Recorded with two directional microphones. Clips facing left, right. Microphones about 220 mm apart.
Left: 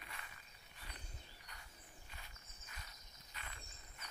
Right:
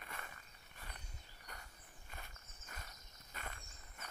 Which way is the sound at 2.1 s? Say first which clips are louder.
Right 4 dB; 50° right (ahead or behind).